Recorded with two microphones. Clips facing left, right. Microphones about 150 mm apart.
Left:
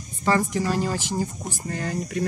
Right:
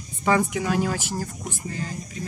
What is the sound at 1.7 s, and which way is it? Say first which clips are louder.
Speech: left 7 dB; 60° left (ahead or behind).